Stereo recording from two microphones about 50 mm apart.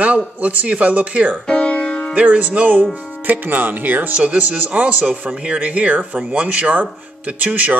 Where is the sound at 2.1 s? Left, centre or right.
Right.